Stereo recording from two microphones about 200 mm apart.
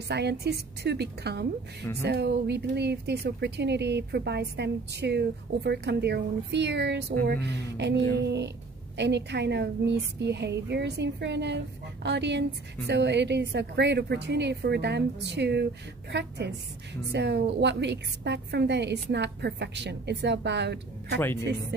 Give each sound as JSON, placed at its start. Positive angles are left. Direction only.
{"t": 0.1, "sound": "a woman's voice", "side_deg": -55}